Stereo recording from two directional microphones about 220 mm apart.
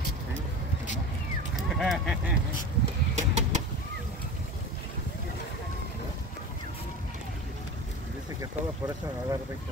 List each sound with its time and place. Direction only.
1.6 s duck: centre (ahead or behind)
3.2 s bird: 30° right (ahead or behind)
8.4 s speech: 15° right (ahead or behind)